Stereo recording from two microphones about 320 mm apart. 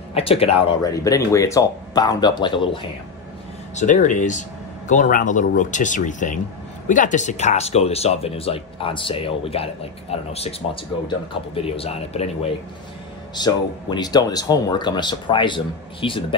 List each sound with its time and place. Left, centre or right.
0.1 s speech: centre
13.3 s speech: centre